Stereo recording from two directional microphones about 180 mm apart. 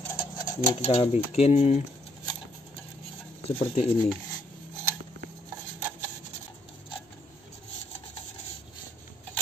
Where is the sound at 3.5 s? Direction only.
35° left (ahead or behind).